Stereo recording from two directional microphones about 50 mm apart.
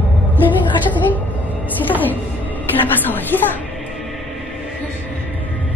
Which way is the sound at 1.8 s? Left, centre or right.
Left.